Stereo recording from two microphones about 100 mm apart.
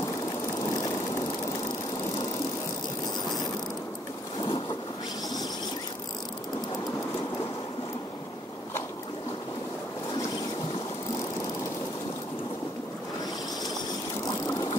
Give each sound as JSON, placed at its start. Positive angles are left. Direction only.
{"t": 0.6, "sound": "vehicle", "side_deg": 40}
{"t": 4.4, "sound": "boat", "side_deg": 55}
{"t": 14.2, "sound": "vehicle", "side_deg": 40}